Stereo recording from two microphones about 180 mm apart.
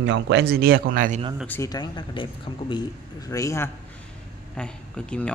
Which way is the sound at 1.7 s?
25° left (ahead or behind).